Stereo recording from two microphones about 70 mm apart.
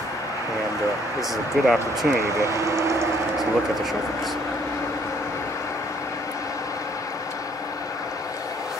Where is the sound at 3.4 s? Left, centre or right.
Centre.